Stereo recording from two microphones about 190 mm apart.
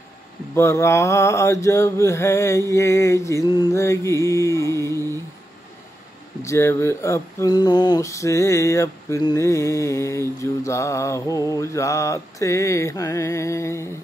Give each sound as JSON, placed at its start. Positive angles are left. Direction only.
{"t": 0.6, "sound": "speech", "side_deg": 15}
{"t": 6.4, "sound": "speech", "side_deg": 15}